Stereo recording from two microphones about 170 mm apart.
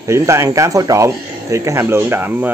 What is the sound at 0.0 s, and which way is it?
Speech, 15° right (ahead or behind).